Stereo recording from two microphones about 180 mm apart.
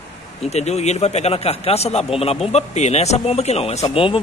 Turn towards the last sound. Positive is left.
turn(degrees=30)  # may be behind; listen again after turning